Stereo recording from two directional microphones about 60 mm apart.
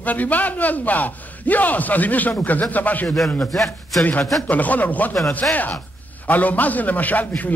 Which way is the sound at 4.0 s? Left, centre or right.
Left.